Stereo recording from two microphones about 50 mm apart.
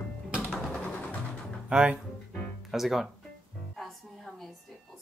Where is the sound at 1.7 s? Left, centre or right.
Right.